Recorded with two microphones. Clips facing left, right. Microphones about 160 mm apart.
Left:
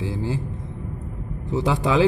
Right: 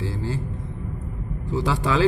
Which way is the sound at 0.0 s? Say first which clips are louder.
Left 2 dB; 20° left (ahead or behind).